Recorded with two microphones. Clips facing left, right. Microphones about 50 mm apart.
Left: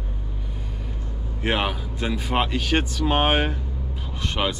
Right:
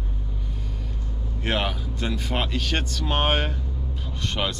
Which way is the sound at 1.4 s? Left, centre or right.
Centre.